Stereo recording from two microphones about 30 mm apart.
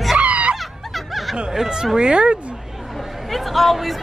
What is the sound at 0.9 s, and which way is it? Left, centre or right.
Snicker, centre.